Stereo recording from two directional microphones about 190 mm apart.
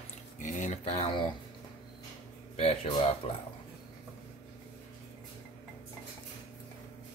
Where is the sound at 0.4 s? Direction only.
40° left (ahead or behind).